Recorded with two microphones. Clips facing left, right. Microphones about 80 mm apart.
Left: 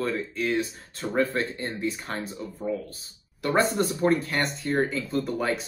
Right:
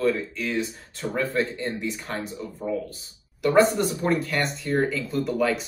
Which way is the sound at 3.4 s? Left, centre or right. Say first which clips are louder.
Right 4 dB; left.